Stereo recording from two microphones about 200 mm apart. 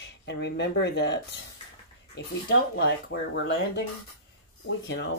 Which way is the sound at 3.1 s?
60° left (ahead or behind).